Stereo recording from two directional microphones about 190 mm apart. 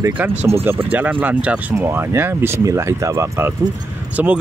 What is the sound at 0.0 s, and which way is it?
Speech, 10° right (ahead or behind).